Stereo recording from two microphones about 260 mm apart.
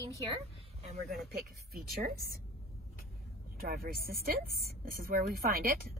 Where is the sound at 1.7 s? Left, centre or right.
Right.